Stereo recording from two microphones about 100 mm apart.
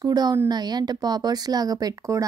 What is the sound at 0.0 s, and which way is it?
Speech, 40° right (ahead or behind).